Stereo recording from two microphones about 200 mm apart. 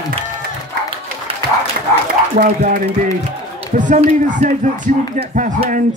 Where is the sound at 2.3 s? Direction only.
45° right (ahead or behind).